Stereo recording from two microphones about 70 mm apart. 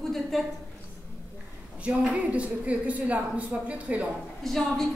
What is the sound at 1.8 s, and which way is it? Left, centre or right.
A woman's voice, centre.